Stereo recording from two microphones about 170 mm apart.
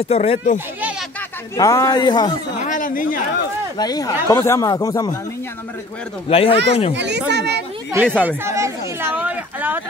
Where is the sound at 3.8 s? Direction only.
20° left (ahead or behind).